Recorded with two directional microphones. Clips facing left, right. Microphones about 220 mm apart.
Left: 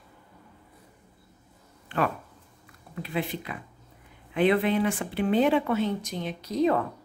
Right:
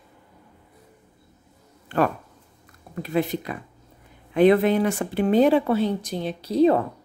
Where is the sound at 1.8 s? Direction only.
40° right (ahead or behind).